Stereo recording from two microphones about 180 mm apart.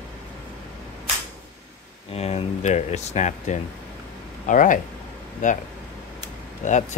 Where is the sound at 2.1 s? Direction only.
35° left (ahead or behind).